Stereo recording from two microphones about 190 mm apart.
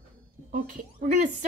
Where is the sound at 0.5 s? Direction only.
40° right (ahead or behind).